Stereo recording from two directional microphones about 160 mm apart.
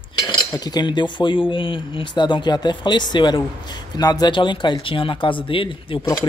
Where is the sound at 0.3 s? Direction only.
25° left (ahead or behind).